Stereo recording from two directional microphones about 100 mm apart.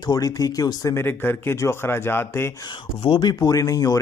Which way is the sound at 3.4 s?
35° left (ahead or behind).